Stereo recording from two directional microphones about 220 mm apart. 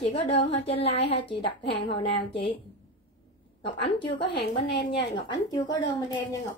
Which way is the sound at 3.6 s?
25° left (ahead or behind).